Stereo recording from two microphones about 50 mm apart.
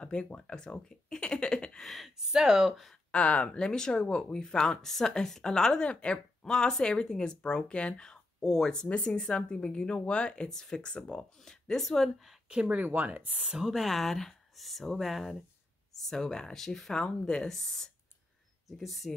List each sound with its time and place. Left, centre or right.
0.0 s speech: left
1.8 s speech: centre
3.1 s speech: left; by 8.8 s centre
8.8 s speech: left
10.8 s speech: left
11.6 s speech: centre
12.6 s speech: right
13.5 s speech: centre
13.8 s speech: centre